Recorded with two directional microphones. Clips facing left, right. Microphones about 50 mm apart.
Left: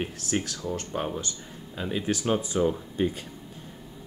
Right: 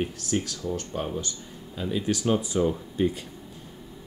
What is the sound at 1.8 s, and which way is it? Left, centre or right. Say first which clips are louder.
Speech: right 1 dB; left.